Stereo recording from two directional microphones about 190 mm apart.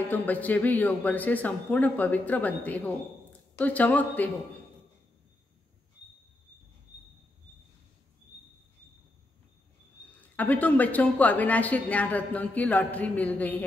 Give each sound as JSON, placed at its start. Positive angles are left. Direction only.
{"t": 0.1, "sound": "speech", "side_deg": 10}
{"t": 10.3, "sound": "speech", "side_deg": 10}